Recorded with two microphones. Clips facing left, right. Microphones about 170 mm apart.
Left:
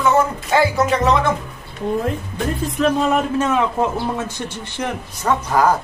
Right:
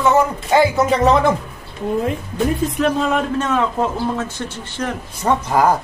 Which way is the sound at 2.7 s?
Centre (ahead or behind).